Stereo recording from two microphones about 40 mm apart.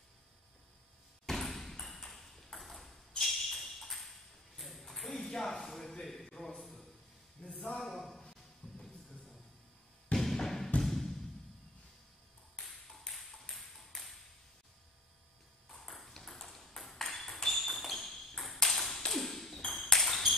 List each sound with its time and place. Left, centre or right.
1.2 s ping: centre
3.2 s music: centre
5.1 s a sound: centre
7.4 s a sound: left
7.9 s music: centre
10.1 s music: centre
13.1 s ping: centre
15.8 s ping: centre